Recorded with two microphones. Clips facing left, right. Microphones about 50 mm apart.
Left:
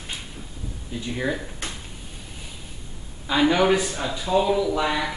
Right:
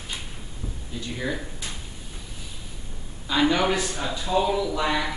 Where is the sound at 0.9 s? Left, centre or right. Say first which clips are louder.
Left 3 dB; centre.